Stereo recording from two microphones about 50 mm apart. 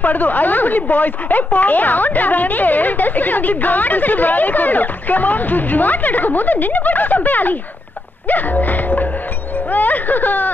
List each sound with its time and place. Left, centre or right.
0.0 s a woman's voice: left
8.3 s music: left
9.7 s a woman's voice: left